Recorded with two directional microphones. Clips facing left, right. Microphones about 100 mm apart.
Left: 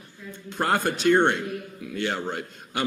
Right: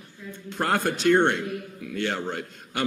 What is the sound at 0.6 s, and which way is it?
A man's voice, 5° left (ahead or behind).